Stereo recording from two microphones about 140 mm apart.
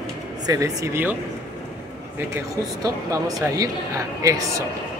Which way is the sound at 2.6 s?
25° right (ahead or behind).